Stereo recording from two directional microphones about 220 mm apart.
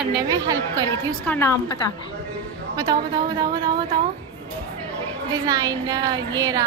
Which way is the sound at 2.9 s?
20° right (ahead or behind).